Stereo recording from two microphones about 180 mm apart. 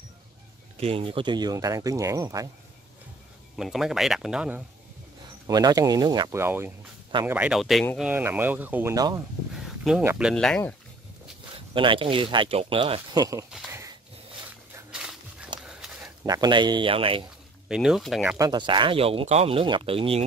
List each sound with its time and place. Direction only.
0.7 s speech: 30° right (ahead or behind)
3.5 s speech: centre (ahead or behind)
5.5 s speech: 20° right (ahead or behind)
9.5 s a sound: 5° right (ahead or behind)
10.1 s speech: centre (ahead or behind)
11.5 s speech: 30° right (ahead or behind)
13.5 s a sound: 5° right (ahead or behind)
14.9 s dog: 5° right (ahead or behind)
15.6 s a sound: 5° right (ahead or behind)
16.3 s speech: 25° right (ahead or behind)
17.6 s speech: 5° right (ahead or behind)
18.4 s speech: 25° right (ahead or behind)